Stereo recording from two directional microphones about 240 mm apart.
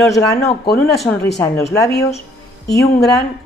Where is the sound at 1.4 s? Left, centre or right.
Centre.